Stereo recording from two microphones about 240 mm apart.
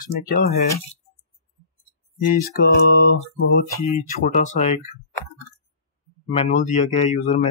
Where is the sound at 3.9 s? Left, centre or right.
Left.